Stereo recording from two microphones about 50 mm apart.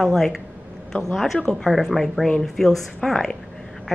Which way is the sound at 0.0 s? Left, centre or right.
Centre.